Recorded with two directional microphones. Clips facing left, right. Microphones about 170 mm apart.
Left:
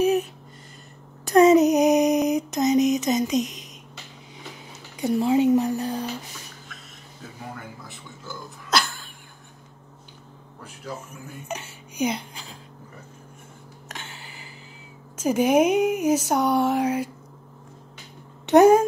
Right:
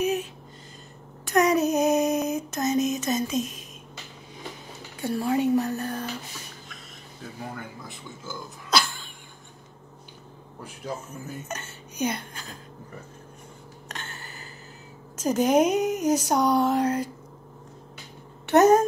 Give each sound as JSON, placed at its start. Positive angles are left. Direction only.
{"t": 1.2, "sound": "a sound", "side_deg": 30}
{"t": 4.9, "sound": "speech", "side_deg": 20}
{"t": 7.9, "sound": "a sound", "side_deg": 0}
{"t": 11.1, "sound": "speech", "side_deg": 10}
{"t": 15.1, "sound": "speech", "side_deg": 10}
{"t": 18.5, "sound": "speech", "side_deg": 10}